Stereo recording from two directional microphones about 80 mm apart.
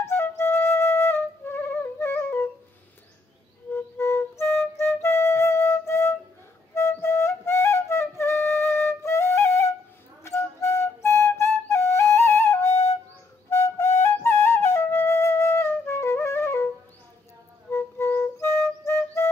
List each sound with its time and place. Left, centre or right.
0.0 s flute: left
2.0 s music: left
4.0 s flute: left
17.7 s music: left